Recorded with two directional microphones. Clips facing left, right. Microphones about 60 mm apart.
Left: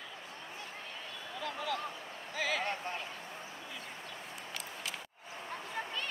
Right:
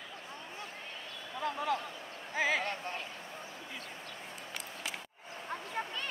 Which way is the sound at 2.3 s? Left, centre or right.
Right.